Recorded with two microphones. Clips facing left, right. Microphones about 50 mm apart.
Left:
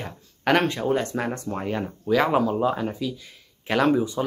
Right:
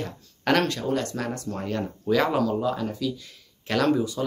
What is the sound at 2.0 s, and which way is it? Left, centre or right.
Speech, centre.